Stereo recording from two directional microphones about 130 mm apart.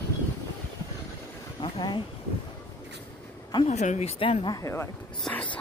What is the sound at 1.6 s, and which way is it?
Speech, 35° left (ahead or behind).